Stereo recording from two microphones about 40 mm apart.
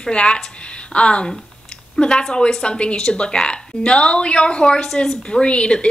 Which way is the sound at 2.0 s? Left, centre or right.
Left.